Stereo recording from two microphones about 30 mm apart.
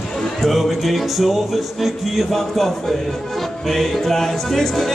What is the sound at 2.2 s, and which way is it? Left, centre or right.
Speech, centre.